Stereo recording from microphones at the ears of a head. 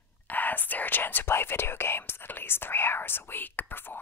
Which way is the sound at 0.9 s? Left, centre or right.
Left.